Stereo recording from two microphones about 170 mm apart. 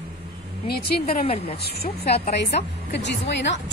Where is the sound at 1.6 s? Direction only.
70° left (ahead or behind).